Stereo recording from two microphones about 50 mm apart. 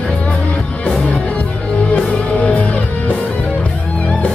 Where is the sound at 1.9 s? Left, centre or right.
Left.